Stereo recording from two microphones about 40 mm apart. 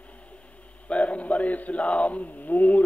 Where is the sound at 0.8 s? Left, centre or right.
Left.